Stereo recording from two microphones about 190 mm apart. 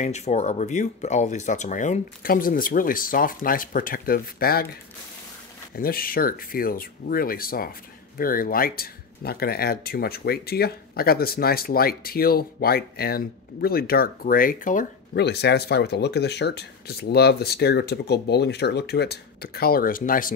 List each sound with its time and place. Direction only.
0.0 s speech: 35° left (ahead or behind); by 4.6 s 50° left (ahead or behind)
5.8 s speech: 50° left (ahead or behind)
15.1 s speech: 60° left (ahead or behind)